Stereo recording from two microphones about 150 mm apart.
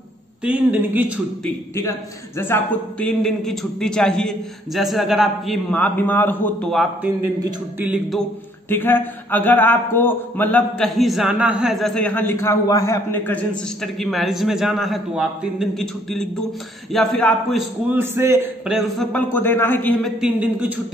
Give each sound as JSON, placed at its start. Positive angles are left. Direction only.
{"t": 0.4, "sound": "speech", "side_deg": -10}
{"t": 1.8, "sound": "a man's voice", "side_deg": 20}
{"t": 7.8, "sound": "speech", "side_deg": -10}
{"t": 8.6, "sound": "a man's voice", "side_deg": 15}
{"t": 11.0, "sound": "a man's voice", "side_deg": 0}
{"t": 13.9, "sound": "a man's voice", "side_deg": 0}
{"t": 17.9, "sound": "speech", "side_deg": -15}
{"t": 18.7, "sound": "a man's voice", "side_deg": 0}
{"t": 19.1, "sound": "a man's voice", "side_deg": 15}
{"t": 20.0, "sound": "speech", "side_deg": -5}